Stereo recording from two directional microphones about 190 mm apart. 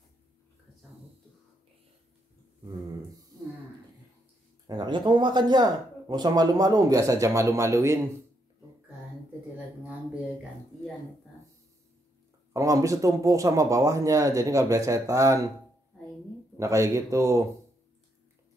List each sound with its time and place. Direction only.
4.6 s speech: 20° right (ahead or behind)
12.5 s speech: 15° right (ahead or behind)
16.5 s speech: 15° right (ahead or behind)